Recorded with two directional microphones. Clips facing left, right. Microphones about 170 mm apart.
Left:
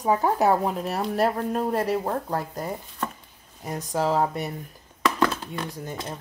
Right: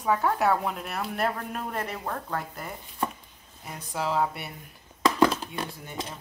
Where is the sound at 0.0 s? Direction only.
35° left (ahead or behind).